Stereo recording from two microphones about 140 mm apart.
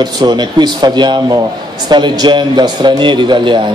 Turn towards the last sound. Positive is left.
turn(degrees=-35)  # may be behind; listen again after turning